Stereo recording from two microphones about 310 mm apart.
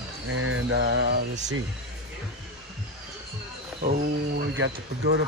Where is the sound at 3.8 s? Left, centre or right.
Right.